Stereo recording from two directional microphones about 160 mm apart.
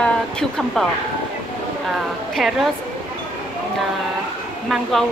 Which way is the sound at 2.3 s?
Centre (ahead or behind).